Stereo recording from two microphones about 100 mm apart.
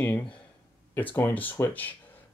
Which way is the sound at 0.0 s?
10° left (ahead or behind).